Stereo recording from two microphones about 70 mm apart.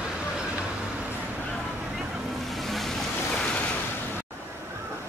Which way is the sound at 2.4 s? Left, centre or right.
Centre.